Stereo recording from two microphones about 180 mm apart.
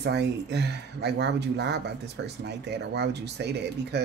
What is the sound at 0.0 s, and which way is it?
Speech, 65° right (ahead or behind).